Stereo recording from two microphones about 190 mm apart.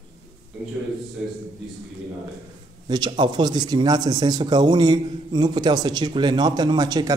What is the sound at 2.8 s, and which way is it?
A man's voice, 20° right (ahead or behind).